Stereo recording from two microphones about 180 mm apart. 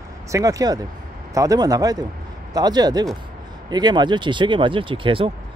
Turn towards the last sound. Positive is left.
turn(degrees=-30)  # may be behind; listen again after turning